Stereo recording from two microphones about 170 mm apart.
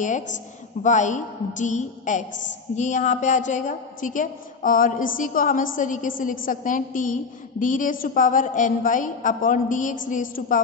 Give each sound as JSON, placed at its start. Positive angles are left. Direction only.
{"t": 0.0, "sound": "a woman's voice", "side_deg": 45}